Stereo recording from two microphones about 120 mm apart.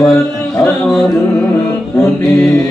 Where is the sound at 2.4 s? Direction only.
5° left (ahead or behind).